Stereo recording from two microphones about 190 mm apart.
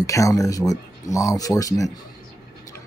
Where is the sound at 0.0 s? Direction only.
15° left (ahead or behind).